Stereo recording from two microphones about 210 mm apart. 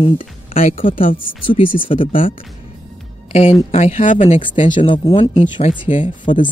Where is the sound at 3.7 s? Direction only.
30° left (ahead or behind).